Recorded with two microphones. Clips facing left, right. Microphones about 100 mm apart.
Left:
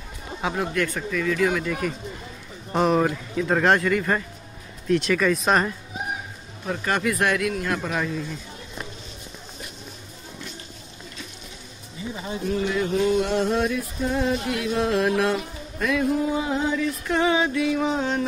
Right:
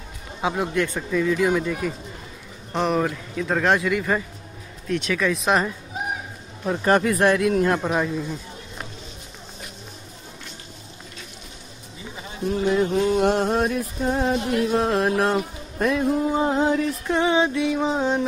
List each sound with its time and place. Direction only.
0.4 s speech: 15° right (ahead or behind)
2.7 s speech: 5° left (ahead or behind)
6.8 s music: 35° right (ahead or behind); by 8.4 s 15° right (ahead or behind)
12.4 s music: 35° right (ahead or behind)
13.2 s music: 45° right (ahead or behind); by 16.1 s 30° right (ahead or behind)
16.3 s music: 45° right (ahead or behind)
17.1 s music: 20° right (ahead or behind)